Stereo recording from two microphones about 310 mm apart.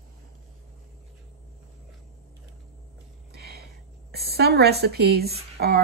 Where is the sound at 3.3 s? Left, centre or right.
Right.